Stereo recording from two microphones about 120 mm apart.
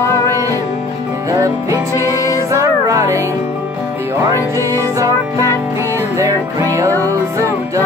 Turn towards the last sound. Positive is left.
turn(degrees=-25)  # may be behind; listen again after turning